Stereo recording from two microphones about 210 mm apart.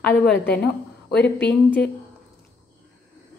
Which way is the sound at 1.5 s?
5° left (ahead or behind).